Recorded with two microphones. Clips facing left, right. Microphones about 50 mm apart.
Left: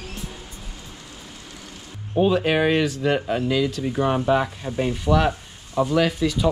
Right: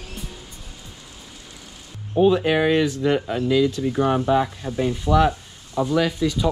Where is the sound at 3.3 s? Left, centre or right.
Left.